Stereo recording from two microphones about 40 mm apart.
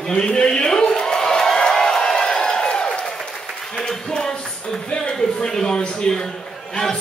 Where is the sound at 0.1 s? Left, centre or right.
Centre.